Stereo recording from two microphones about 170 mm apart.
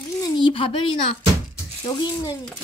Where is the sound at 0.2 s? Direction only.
30° left (ahead or behind).